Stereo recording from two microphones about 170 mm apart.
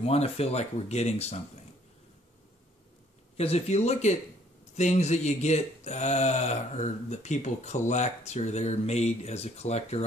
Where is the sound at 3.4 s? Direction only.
35° left (ahead or behind).